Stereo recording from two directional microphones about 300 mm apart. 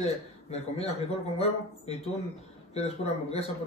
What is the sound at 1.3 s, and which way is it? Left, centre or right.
A man's voice, left.